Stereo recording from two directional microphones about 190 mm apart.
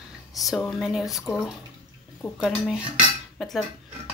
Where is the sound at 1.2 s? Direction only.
15° left (ahead or behind).